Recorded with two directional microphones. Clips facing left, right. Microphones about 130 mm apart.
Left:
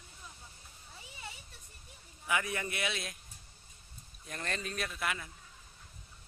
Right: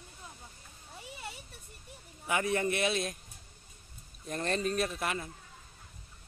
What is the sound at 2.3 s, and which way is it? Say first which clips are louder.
Speech: right 5 dB; 35° right (ahead or behind).